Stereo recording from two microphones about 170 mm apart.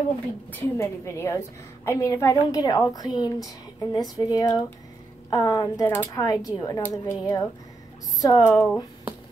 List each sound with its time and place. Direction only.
0.5 s a woman's voice: 15° left (ahead or behind)